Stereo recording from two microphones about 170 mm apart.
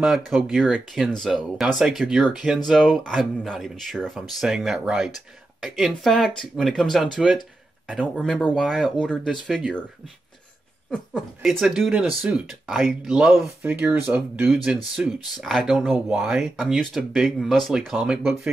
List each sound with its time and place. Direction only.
0.0 s speech: centre (ahead or behind)
10.9 s speech: centre (ahead or behind)